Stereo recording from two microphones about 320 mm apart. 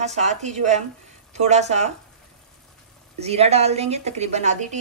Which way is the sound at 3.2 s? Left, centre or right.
Centre.